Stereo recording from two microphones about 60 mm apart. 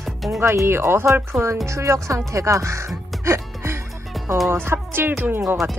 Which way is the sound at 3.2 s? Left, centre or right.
Right.